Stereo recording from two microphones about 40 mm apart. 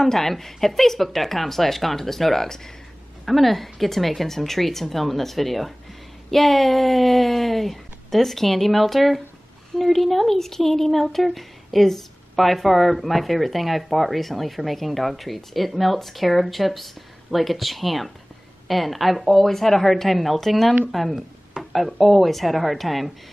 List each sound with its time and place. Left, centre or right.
0.0 s speech: centre
21.5 s a sound: centre
22.0 s speech: centre